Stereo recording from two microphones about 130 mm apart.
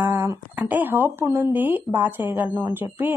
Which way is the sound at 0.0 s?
15° right (ahead or behind).